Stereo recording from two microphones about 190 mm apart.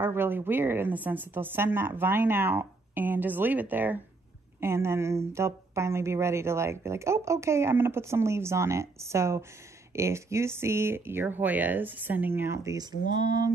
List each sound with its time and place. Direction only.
0.0 s speech: 10° right (ahead or behind)